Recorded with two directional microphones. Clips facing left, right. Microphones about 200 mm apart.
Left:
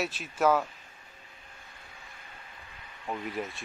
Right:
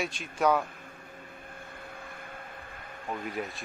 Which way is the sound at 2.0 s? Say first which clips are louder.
Right 8 dB; 55° right (ahead or behind).